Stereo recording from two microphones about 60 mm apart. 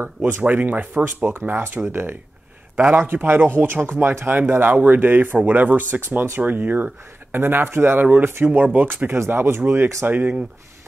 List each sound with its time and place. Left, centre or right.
0.0 s speech: right
8.5 s speech: right